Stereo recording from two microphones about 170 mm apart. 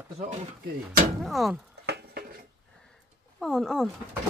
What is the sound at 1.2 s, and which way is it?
Speech, centre (ahead or behind).